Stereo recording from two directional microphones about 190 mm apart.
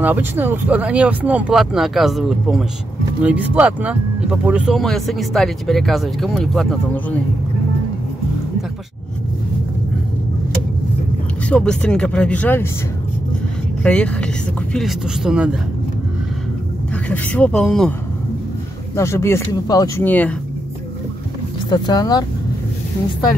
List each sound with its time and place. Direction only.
0.0 s speech: 10° right (ahead or behind)
11.4 s speech: 5° left (ahead or behind)
13.8 s speech: 5° left (ahead or behind)
16.9 s speech: 5° left (ahead or behind)
18.9 s speech: 15° left (ahead or behind)
21.6 s speech: 20° left (ahead or behind)